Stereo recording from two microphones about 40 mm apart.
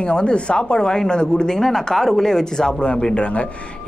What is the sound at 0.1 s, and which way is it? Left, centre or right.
Speech, left.